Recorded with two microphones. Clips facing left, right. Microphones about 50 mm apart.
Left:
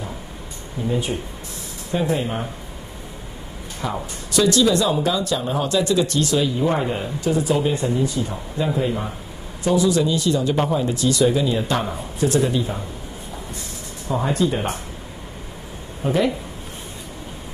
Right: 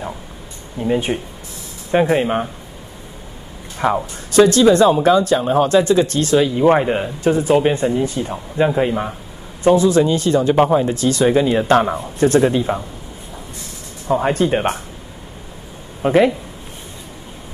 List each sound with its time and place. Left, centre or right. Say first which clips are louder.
0.8 s speech: right 5 dB; right
3.8 s speech: right 9 dB; right
14.2 s speech: right 3 dB; right
16.0 s speech: right 7 dB; right